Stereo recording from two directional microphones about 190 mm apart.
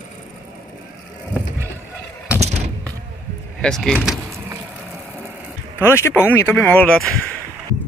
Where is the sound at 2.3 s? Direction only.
35° right (ahead or behind).